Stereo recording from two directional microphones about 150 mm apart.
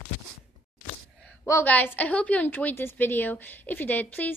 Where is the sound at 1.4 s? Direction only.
15° left (ahead or behind).